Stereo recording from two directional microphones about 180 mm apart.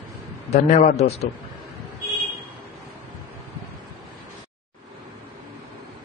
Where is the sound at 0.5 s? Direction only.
35° left (ahead or behind).